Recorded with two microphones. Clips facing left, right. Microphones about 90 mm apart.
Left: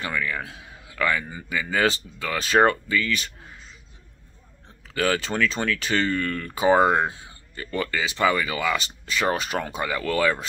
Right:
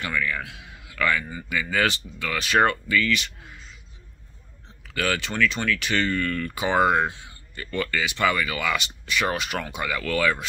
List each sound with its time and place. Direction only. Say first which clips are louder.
0.0 s speech: even; 30° left (ahead or behind)
4.8 s speech: left 3 dB; 30° left (ahead or behind)